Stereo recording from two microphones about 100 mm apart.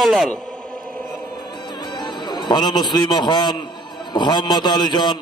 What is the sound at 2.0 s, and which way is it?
A man's voice, 45° left (ahead or behind).